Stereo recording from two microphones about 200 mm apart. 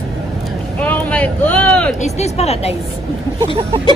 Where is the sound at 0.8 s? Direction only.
10° left (ahead or behind).